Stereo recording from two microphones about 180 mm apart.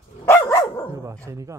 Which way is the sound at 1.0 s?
15° right (ahead or behind).